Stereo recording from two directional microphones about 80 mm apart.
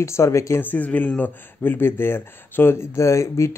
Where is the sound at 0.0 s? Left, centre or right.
Left.